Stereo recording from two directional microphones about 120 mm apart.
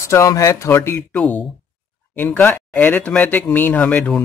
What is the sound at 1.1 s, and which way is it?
Speech, 10° left (ahead or behind).